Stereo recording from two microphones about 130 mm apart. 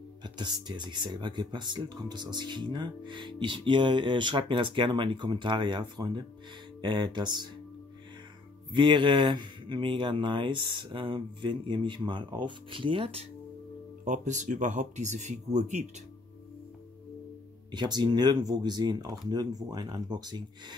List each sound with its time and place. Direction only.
0.2 s speech: 35° right (ahead or behind)
8.7 s speech: 40° right (ahead or behind)
14.0 s speech: 70° right (ahead or behind)
17.6 s speech: 35° right (ahead or behind)